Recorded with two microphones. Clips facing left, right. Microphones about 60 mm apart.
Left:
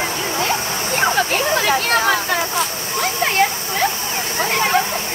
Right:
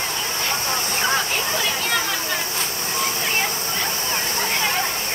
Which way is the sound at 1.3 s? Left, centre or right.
Left.